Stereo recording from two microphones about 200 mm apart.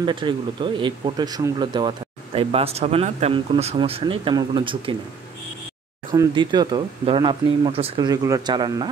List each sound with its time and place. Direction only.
0.0 s speech: 25° right (ahead or behind)
6.1 s speech: 20° right (ahead or behind)